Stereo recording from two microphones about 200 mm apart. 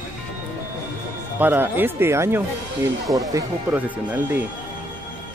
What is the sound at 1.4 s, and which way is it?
Speech, 10° right (ahead or behind).